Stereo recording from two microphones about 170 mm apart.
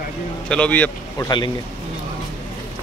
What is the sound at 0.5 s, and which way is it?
Speech, 5° left (ahead or behind).